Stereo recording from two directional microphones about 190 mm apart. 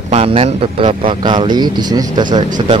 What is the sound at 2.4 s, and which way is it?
Speech, 40° right (ahead or behind).